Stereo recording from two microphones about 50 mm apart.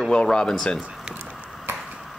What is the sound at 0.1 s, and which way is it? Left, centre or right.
Speech, centre.